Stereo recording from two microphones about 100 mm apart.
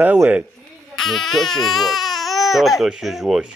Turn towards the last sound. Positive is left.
turn(degrees=-5)  # may be behind; listen again after turning